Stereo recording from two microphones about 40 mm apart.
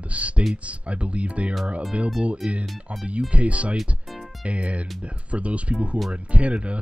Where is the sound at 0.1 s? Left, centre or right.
Right.